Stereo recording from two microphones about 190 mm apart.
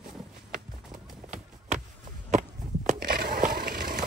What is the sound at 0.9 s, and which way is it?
Run, 40° right (ahead or behind).